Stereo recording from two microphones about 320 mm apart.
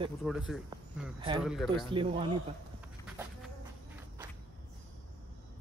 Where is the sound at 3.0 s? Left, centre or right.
Centre.